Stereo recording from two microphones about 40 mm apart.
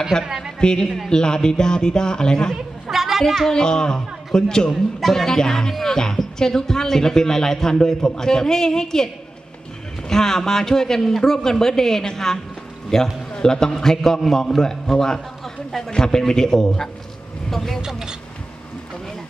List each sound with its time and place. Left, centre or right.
0.1 s speech: centre
0.8 s a man's voice: centre
1.1 s a man's voice: centre
2.9 s a sound: centre
3.4 s speech: centre
17.8 s speech: centre